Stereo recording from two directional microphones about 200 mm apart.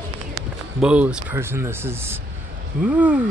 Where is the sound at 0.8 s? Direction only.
5° right (ahead or behind).